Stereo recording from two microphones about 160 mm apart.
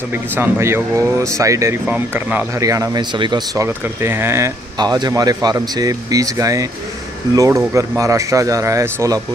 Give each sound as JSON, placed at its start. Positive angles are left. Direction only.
{"t": 0.1, "sound": "speech", "side_deg": -15}
{"t": 3.6, "sound": "speech", "side_deg": -15}
{"t": 4.7, "sound": "speech", "side_deg": -25}